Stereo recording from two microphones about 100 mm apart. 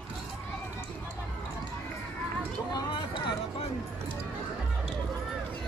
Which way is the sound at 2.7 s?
55° left (ahead or behind).